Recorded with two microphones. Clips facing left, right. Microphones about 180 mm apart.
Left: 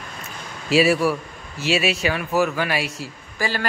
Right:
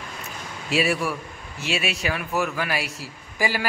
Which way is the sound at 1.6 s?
Centre (ahead or behind).